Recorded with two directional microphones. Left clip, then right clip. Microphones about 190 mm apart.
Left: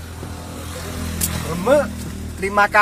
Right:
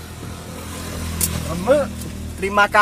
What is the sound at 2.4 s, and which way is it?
Speech, 5° right (ahead or behind).